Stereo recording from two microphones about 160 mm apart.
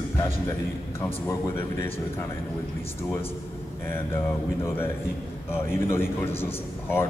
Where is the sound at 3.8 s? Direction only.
15° left (ahead or behind).